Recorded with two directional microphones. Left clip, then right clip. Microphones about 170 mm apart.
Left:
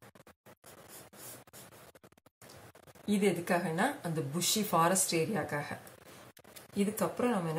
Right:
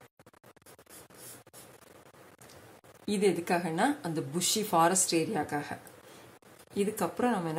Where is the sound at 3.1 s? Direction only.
30° right (ahead or behind).